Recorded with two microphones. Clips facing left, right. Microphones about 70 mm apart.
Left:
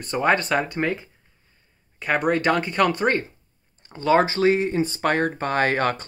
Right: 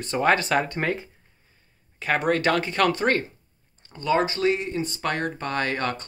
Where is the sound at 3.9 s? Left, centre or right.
Left.